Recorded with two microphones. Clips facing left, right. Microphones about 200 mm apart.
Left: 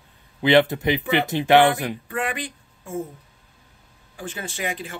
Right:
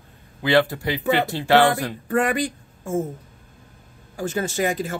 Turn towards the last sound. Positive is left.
turn(degrees=-40)  # may be behind; listen again after turning